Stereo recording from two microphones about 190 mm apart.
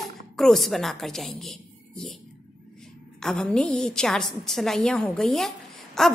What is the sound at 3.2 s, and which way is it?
A woman's voice, 5° left (ahead or behind).